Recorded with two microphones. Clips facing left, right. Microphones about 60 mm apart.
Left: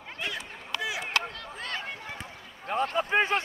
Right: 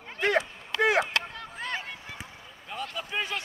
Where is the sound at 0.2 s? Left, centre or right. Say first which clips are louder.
Right 11 dB; right.